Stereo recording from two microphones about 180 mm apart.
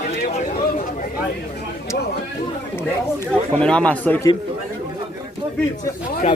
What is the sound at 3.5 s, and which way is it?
Speech, 5° left (ahead or behind).